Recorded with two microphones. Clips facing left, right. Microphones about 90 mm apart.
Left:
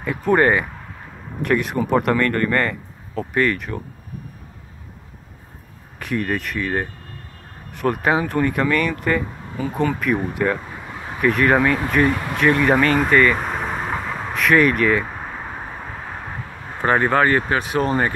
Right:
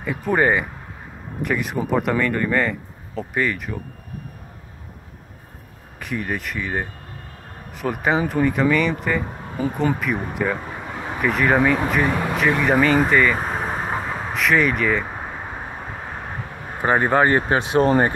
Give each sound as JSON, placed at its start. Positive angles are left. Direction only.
{"t": 0.0, "sound": "speech", "side_deg": 0}
{"t": 5.9, "sound": "speech", "side_deg": 0}
{"t": 16.8, "sound": "speech", "side_deg": -15}